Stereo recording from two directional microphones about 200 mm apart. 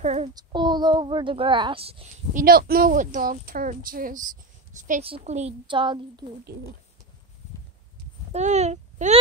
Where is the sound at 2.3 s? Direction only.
45° right (ahead or behind).